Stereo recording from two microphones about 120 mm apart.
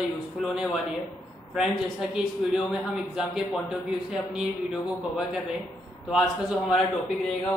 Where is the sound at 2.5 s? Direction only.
5° right (ahead or behind).